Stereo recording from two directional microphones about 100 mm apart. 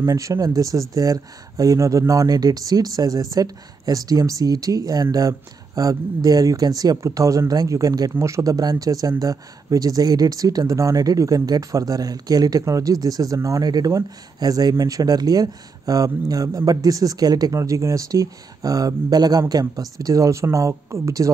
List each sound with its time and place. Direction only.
0.0 s speech: 35° right (ahead or behind)